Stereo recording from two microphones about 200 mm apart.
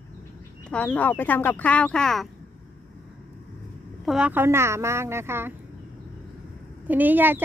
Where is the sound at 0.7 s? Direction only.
5° left (ahead or behind).